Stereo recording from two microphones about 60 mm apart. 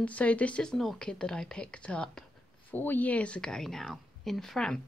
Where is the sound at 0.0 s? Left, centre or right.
Left.